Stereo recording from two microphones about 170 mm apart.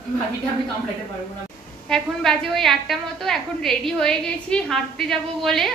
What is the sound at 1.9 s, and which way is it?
A woman's voice, 5° left (ahead or behind).